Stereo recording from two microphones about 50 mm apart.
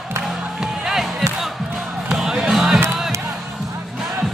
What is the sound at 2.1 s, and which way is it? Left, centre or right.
Basketball bounce, centre.